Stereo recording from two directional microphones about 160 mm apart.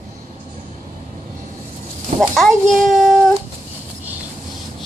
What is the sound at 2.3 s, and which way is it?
Child singing, centre (ahead or behind).